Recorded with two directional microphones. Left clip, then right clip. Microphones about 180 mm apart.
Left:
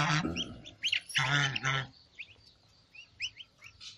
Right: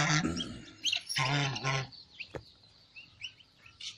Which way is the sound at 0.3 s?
15° right (ahead or behind).